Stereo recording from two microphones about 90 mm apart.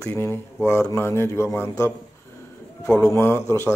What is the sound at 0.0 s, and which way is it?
Speech, 25° left (ahead or behind).